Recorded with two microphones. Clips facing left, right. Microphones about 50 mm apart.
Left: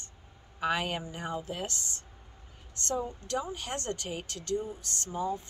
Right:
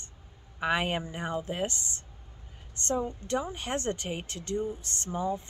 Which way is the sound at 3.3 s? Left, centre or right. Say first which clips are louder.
Right 3 dB; right.